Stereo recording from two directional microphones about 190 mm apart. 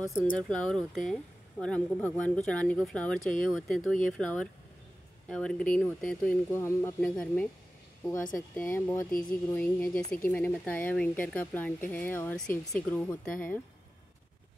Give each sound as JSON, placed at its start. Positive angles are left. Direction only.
{"t": 0.2, "sound": "speech", "side_deg": 5}